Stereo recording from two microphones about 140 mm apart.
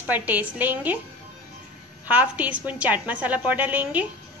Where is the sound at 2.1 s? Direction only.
10° right (ahead or behind).